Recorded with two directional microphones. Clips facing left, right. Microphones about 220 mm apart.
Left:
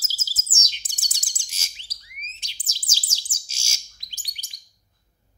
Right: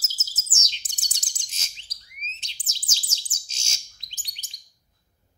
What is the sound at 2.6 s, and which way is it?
Chirp, 10° left (ahead or behind).